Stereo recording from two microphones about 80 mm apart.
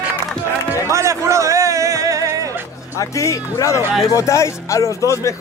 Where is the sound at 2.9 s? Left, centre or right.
Left.